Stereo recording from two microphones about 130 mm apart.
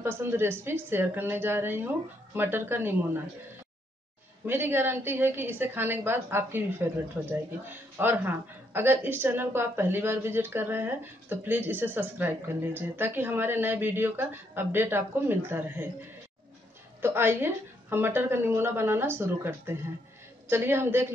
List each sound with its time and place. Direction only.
0.0 s a woman's voice: 15° right (ahead or behind)
4.5 s a woman's voice: 15° right (ahead or behind)
17.0 s a woman's voice: 20° right (ahead or behind)